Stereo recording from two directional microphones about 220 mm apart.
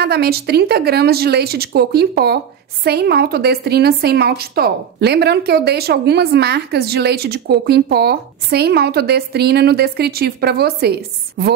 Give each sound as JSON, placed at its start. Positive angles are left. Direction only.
{"t": 0.0, "sound": "speech", "side_deg": -45}